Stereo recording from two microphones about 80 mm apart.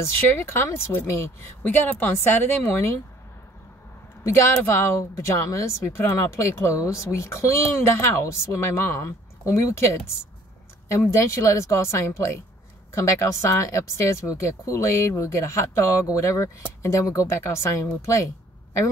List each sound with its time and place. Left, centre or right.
0.0 s speech: left
1.6 s a woman's voice: left
4.2 s a woman's voice: left
10.9 s speech: left